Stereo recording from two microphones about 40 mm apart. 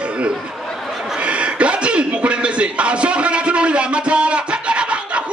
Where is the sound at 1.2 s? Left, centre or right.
Right.